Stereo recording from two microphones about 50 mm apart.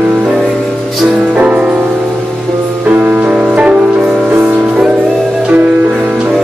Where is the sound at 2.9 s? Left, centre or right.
Right.